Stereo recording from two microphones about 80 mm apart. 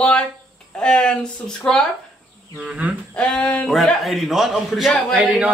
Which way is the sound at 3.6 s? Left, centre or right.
Centre.